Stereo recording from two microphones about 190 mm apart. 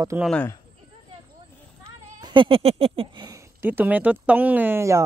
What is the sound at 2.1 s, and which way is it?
Speech, 25° right (ahead or behind).